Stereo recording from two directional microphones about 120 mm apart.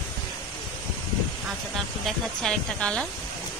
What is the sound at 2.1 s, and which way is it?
Speech, 5° left (ahead or behind).